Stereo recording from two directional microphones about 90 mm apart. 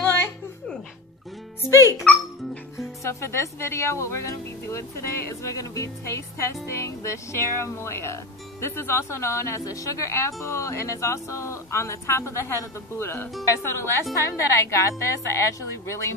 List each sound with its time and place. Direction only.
0.0 s a sound: 25° left (ahead or behind)
1.7 s speech: 35° left (ahead or behind)
3.0 s speech: 30° left (ahead or behind)